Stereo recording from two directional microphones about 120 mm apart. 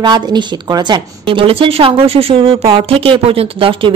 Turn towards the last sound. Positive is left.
turn(degrees=-50)  # may be behind; listen again after turning